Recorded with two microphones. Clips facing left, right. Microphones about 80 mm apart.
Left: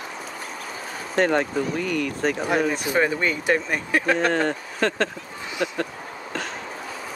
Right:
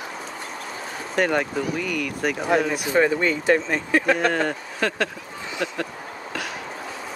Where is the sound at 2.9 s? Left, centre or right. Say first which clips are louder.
Right 5 dB; centre.